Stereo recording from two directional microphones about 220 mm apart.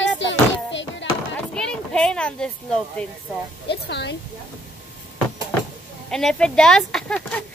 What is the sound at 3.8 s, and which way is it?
Speech, 50° left (ahead or behind).